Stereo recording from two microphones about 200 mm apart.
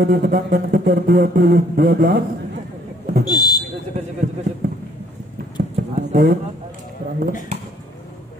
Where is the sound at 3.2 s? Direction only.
20° left (ahead or behind).